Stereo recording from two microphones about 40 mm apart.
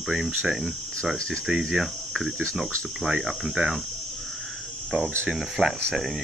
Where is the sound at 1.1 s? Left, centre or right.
Left.